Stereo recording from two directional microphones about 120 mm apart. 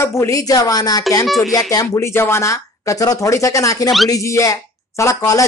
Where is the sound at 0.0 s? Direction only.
25° left (ahead or behind).